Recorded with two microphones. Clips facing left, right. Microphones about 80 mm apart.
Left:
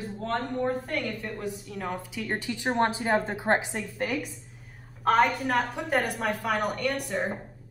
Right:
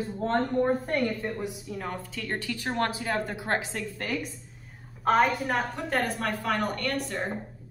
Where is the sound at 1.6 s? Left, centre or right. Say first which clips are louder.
Left 1 dB; centre.